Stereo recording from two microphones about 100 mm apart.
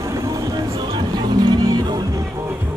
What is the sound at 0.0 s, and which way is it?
Vehicle, 35° right (ahead or behind).